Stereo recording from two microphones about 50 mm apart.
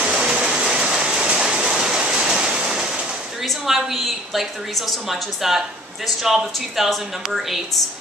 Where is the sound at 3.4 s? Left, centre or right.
Centre.